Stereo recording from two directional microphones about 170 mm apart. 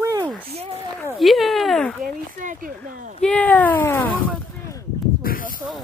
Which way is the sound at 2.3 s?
50° right (ahead or behind).